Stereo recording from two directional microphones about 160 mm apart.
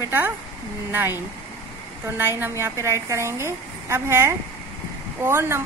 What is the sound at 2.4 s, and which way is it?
A woman's voice, 15° right (ahead or behind).